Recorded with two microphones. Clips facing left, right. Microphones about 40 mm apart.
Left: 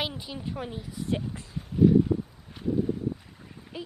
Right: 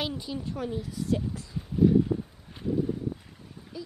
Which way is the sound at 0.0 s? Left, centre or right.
Centre.